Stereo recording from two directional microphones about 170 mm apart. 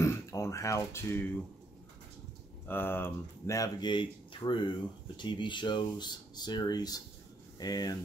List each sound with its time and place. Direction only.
0.0 s speech: 15° left (ahead or behind)
2.6 s speech: 10° left (ahead or behind)